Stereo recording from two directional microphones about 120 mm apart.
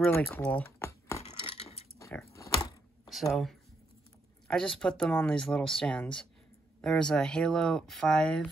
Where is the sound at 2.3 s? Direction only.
25° left (ahead or behind).